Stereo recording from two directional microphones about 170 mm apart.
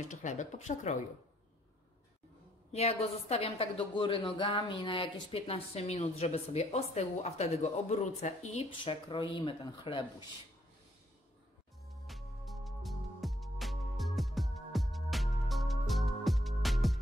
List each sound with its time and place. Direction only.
0.1 s speech: 45° left (ahead or behind)
2.7 s a woman's voice: 40° left (ahead or behind)
12.1 s music: centre (ahead or behind)